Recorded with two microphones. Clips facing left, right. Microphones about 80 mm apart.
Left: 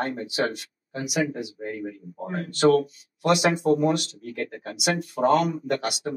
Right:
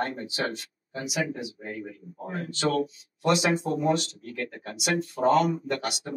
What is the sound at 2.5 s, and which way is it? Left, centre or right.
Speech, left.